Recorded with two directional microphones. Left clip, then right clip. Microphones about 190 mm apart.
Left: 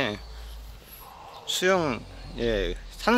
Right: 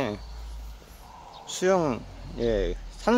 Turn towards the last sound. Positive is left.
turn(degrees=0)  # may be behind; listen again after turning